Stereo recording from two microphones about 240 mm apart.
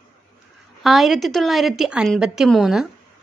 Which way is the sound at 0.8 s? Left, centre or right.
Centre.